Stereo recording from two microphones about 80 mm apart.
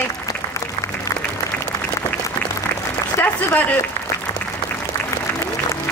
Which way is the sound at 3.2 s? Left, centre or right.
Left.